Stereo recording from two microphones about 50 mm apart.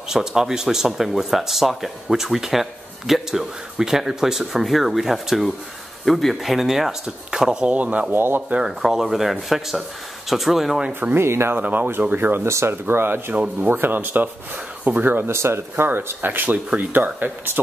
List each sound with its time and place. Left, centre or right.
0.1 s speech: centre
7.6 s speech: right
8.1 s speech: right
8.4 s speech: centre
8.8 s speech: centre
10.9 s speech: right
11.1 s speech: right
11.5 s speech: right
12.4 s speech: right
12.8 s speech: right
13.3 s speech: right
13.7 s speech: right
15.3 s speech: right
15.7 s speech: right